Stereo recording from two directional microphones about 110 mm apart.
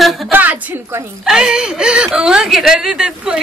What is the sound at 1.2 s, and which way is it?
Speech, 5° right (ahead or behind).